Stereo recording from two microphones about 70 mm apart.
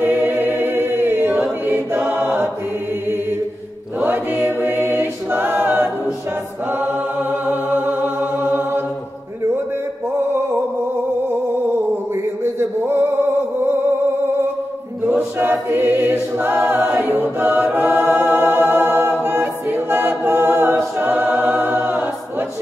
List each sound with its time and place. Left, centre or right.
0.0 s choir: right
4.0 s choir: right
6.7 s music: right
12.5 s male singing: right
15.0 s a capella: right